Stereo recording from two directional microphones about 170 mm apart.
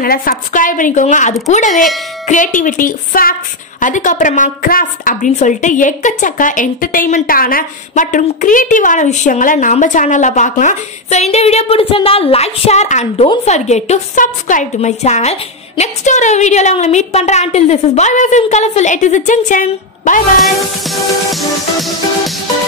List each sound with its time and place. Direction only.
0.0 s a woman's voice: 60° left (ahead or behind)
20.4 s music: centre (ahead or behind)